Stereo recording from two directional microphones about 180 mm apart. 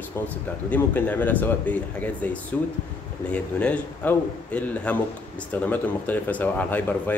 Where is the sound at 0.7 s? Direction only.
10° left (ahead or behind).